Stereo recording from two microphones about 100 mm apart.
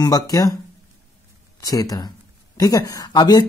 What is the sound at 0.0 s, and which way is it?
Speech, 40° left (ahead or behind).